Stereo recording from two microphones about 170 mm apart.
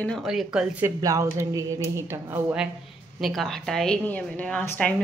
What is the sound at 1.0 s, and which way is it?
Speech, 20° right (ahead or behind).